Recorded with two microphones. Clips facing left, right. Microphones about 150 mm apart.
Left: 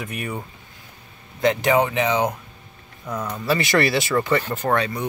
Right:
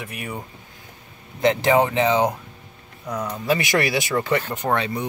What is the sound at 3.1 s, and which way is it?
Speech, 15° right (ahead or behind).